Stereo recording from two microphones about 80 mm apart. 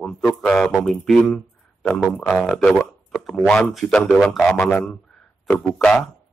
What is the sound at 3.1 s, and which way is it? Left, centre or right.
A man's voice, centre.